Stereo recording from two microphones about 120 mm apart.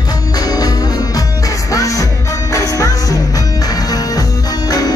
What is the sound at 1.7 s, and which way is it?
Music, 25° left (ahead or behind).